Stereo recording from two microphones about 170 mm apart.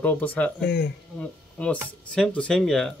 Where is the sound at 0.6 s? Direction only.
80° left.